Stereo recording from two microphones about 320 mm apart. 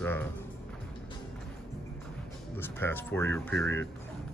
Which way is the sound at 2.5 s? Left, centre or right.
Centre.